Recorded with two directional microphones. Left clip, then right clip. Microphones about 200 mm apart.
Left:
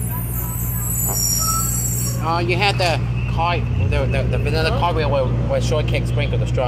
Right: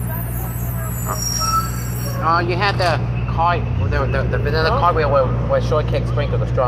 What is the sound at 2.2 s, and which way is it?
Speech, 15° left (ahead or behind).